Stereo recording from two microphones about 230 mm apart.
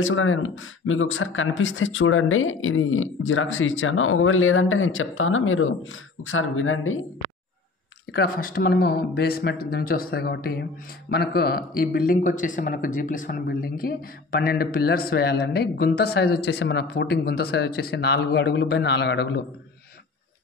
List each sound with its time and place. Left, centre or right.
0.0 s speech: left
8.1 s speech: left